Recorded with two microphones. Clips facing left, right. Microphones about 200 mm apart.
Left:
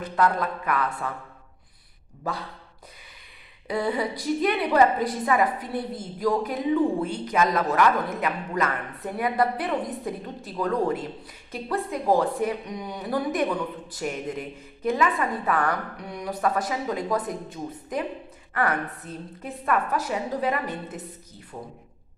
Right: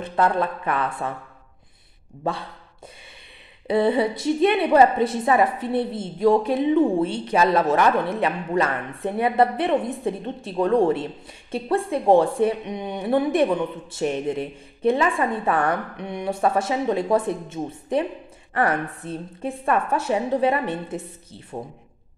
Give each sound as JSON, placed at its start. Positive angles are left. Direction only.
{"t": 0.0, "sound": "a woman's voice", "side_deg": -30}
{"t": 2.3, "sound": "a woman's voice", "side_deg": -25}
{"t": 3.6, "sound": "a woman's voice", "side_deg": -25}